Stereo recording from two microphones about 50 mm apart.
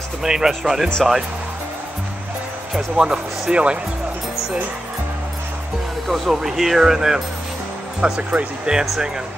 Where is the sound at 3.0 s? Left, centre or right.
Centre.